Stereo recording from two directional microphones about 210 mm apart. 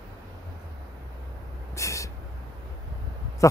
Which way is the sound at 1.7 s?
15° left (ahead or behind).